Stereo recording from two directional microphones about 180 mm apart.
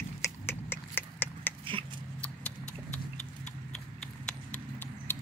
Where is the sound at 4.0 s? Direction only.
5° left (ahead or behind).